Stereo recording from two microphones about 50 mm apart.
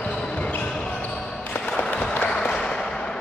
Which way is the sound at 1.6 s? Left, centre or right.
Left.